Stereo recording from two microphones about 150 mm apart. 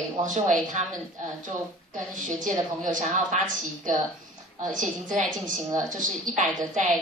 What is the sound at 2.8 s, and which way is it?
Speech, 55° right (ahead or behind).